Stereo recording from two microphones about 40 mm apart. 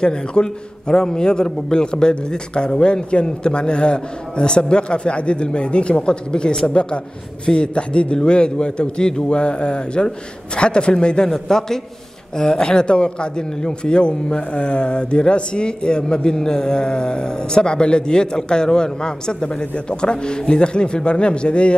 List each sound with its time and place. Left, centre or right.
0.0 s a man's voice: left